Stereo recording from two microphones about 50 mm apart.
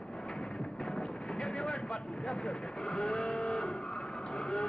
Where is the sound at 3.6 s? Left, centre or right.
Centre.